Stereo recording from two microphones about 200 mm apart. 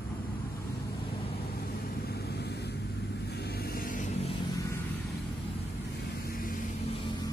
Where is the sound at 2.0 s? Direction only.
50° left (ahead or behind); by 4.4 s 35° left (ahead or behind).